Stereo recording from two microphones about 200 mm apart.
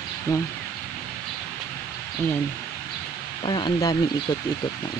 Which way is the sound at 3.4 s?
25° left (ahead or behind).